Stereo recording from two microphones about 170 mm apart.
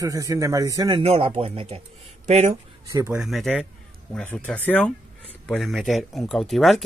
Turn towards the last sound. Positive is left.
turn(degrees=0)  # may be behind; listen again after turning